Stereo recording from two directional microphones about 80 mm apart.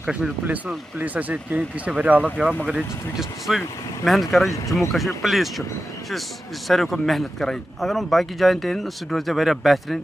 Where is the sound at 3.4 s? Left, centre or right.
Centre.